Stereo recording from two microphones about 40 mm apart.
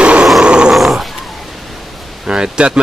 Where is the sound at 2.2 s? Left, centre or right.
Right.